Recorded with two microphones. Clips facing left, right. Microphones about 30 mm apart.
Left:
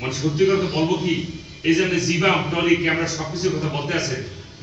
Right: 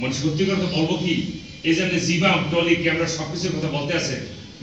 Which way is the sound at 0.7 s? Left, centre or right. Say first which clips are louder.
Left 1 dB; right.